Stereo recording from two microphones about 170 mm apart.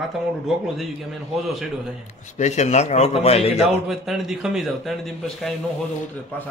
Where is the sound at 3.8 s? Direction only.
Centre (ahead or behind).